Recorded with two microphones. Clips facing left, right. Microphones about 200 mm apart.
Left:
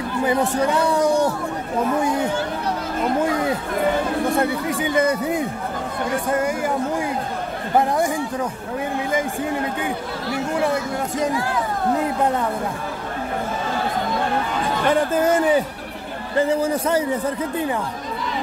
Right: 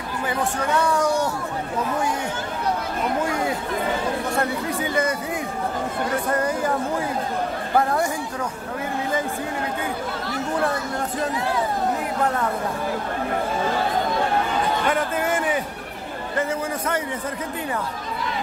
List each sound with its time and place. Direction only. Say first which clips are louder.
0.4 s speech: even; 20° left (ahead or behind)
7.7 s speech: left 2 dB; 20° left (ahead or behind)
14.9 s a man's voice: left 5 dB; 35° left (ahead or behind)